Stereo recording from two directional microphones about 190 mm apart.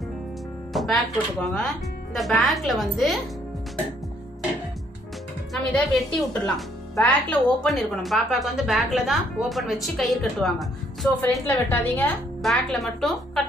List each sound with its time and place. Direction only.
0.7 s a woman's voice: centre (ahead or behind)
5.5 s a woman's voice: 5° left (ahead or behind)
11.4 s a woman's voice: 10° left (ahead or behind)